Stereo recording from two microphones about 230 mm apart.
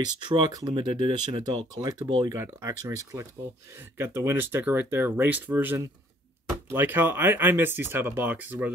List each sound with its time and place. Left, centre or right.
0.0 s speech: centre